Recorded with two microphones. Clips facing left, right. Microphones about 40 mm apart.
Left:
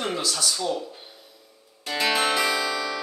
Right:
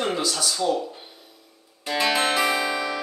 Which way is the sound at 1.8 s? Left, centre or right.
Centre.